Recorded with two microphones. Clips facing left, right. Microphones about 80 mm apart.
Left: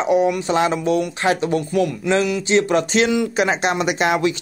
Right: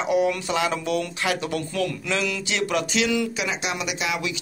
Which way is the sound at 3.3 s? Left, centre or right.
Left.